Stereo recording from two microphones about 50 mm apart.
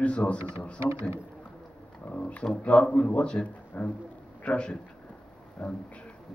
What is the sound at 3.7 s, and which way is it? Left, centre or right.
A man's voice, left.